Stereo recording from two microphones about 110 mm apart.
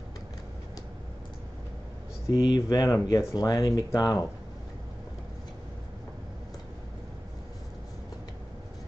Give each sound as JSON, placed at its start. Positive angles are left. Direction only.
{"t": 2.4, "sound": "speech", "side_deg": 40}